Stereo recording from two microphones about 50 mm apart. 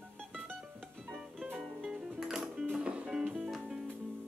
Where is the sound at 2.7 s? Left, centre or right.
Right.